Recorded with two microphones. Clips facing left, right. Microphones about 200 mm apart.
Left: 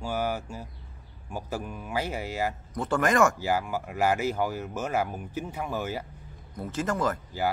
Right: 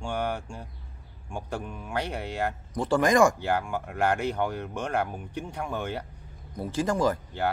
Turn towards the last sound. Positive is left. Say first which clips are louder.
# right 3 dB
turn(degrees=-15)  # may be behind; listen again after turning